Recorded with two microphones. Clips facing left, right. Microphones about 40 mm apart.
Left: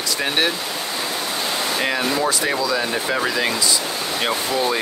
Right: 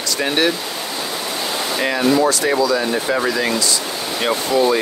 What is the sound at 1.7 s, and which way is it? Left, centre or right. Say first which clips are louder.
Speech: right 6 dB; centre.